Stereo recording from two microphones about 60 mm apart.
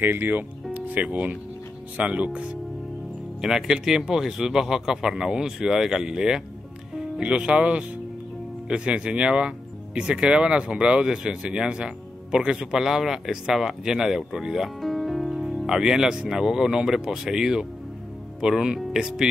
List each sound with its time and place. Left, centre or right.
0.0 s speech: right
3.3 s speech: centre